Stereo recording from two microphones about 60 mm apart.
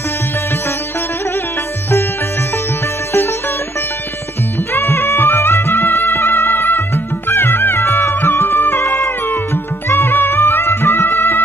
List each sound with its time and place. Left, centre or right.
4.7 s music: left